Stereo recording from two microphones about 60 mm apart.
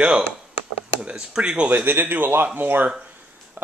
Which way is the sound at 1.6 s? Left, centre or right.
Right.